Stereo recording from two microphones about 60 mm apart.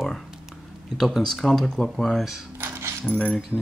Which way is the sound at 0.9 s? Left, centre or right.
Centre.